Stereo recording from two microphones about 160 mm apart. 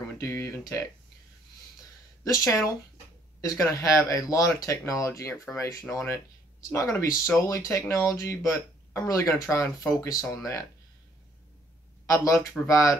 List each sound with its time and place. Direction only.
0.2 s speech: 15° left (ahead or behind)
2.2 s speech: 20° left (ahead or behind)
12.1 s speech: 20° left (ahead or behind)